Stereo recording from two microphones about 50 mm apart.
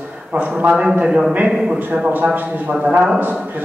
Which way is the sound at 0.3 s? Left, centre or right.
Right.